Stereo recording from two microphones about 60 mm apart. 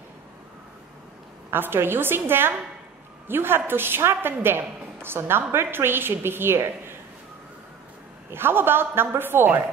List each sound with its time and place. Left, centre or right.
1.5 s a woman's voice: right
8.3 s a woman's voice: right